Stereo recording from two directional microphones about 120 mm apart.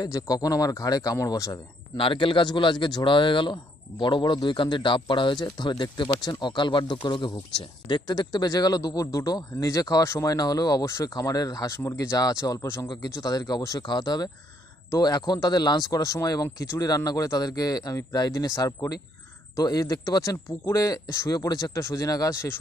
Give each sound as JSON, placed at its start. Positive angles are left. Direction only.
{"t": 0.0, "sound": "speech", "side_deg": 30}
{"t": 2.0, "sound": "speech", "side_deg": 45}
{"t": 12.8, "sound": "speech", "side_deg": 35}